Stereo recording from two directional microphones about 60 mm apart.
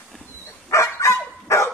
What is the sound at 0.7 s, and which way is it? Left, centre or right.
Dog, left.